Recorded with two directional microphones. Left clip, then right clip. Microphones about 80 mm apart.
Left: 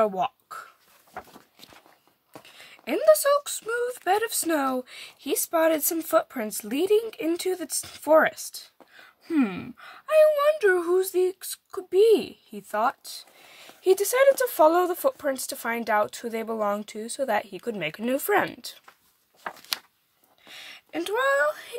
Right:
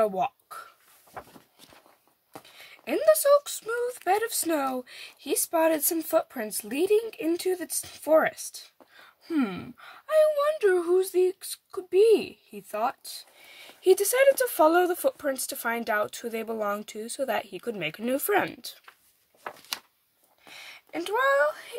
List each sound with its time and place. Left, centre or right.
0.1 s a sound: left
2.4 s speech: left
4.7 s speech: left
8.9 s speech: left
12.7 s speech: left
13.6 s speech: centre; by 18.8 s left
20.4 s speech: left